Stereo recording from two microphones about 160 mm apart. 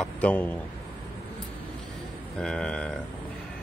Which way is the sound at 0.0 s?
10° left (ahead or behind).